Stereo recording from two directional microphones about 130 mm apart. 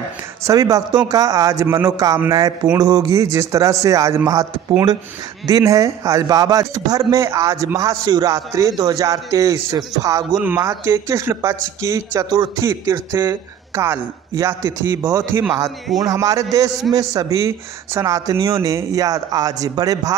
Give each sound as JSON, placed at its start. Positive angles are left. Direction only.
{"t": 0.5, "sound": "speech", "side_deg": -25}